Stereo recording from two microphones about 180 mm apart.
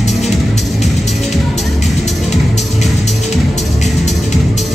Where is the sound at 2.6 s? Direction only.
40° left (ahead or behind).